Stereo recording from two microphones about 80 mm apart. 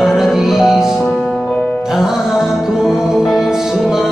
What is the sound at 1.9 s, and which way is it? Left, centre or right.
Music, centre.